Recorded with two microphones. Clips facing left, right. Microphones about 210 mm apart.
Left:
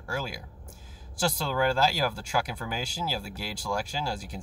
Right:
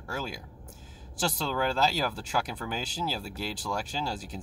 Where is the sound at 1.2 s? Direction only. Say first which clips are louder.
Left 3 dB; 5° left (ahead or behind).